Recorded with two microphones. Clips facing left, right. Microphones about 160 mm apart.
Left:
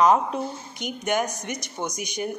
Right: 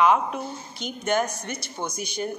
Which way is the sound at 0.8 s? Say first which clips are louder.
Right 1 dB; 15° left (ahead or behind).